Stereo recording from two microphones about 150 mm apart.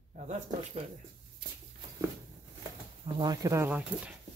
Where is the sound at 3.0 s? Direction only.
30° right (ahead or behind); by 4.1 s 10° right (ahead or behind).